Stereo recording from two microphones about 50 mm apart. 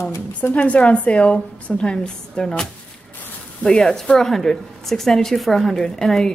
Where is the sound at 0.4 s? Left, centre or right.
Left.